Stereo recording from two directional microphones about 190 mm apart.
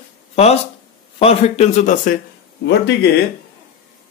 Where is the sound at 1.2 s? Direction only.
35° left (ahead or behind).